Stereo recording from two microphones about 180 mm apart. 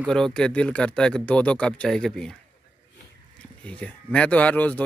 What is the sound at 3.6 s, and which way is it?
Speech, 5° left (ahead or behind).